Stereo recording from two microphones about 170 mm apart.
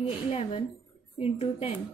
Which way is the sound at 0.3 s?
35° left (ahead or behind).